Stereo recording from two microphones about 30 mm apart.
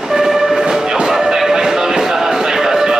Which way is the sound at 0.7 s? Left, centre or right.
Centre.